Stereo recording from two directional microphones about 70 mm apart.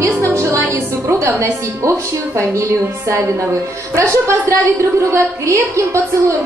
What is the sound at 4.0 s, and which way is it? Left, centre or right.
A woman's voice, right.